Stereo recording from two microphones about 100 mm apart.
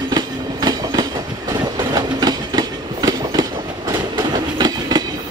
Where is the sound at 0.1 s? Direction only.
40° right (ahead or behind).